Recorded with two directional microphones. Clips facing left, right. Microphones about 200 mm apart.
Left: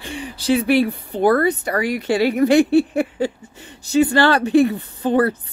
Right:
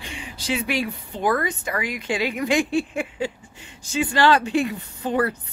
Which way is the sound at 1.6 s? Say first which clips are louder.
Left 7 dB; 40° left (ahead or behind).